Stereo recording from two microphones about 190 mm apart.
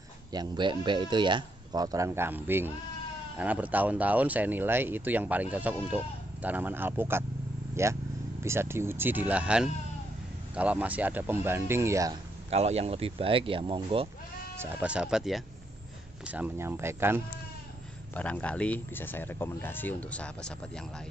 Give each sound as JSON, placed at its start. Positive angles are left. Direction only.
{"t": 0.3, "sound": "speech", "side_deg": -25}
{"t": 12.4, "sound": "speech", "side_deg": -35}
{"t": 14.6, "sound": "speech", "side_deg": -10}
{"t": 18.1, "sound": "speech", "side_deg": 5}